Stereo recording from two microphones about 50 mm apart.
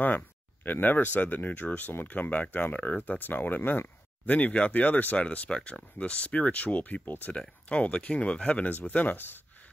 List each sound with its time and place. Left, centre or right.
0.7 s speech: left
4.3 s speech: left
5.2 s speech: left
8.6 s speech: left